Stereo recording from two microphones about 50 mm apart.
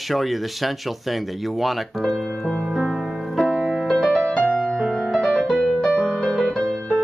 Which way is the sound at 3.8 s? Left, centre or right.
Centre.